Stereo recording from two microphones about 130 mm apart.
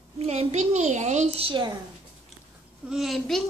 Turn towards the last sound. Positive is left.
turn(degrees=0)  # may be behind; listen again after turning